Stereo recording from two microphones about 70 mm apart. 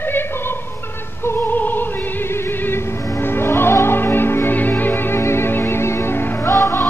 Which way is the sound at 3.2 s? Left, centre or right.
Left.